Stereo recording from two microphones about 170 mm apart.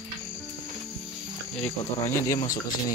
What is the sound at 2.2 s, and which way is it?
Speech, 20° left (ahead or behind).